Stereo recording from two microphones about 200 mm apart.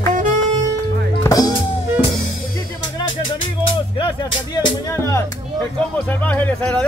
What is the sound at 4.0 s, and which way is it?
Music, 25° left (ahead or behind).